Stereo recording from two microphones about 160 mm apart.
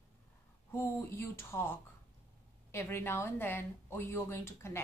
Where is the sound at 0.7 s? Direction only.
15° left (ahead or behind).